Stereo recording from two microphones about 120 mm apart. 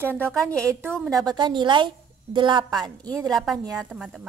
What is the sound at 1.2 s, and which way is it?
A woman's voice, 40° right (ahead or behind).